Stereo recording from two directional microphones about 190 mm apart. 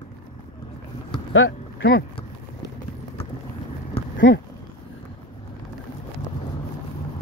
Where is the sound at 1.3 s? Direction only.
90° left.